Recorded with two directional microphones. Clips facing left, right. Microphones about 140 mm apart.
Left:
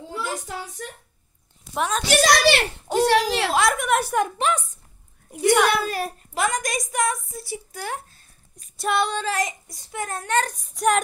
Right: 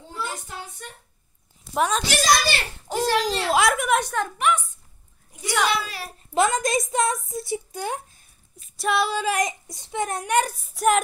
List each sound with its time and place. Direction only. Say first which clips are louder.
1.7 s a woman's voice: right 2 dB; centre (ahead or behind)
2.1 s a child's voice: left 6 dB; 70° left (ahead or behind)
3.5 s a woman's voice: right 1 dB; centre (ahead or behind)
4.4 s a woman's voice: right 1 dB; 30° left (ahead or behind)
5.7 s speech: left 4 dB; 50° left (ahead or behind)
6.3 s a woman's voice: right 4 dB; 25° right (ahead or behind)
8.7 s a child's voice: even; centre (ahead or behind)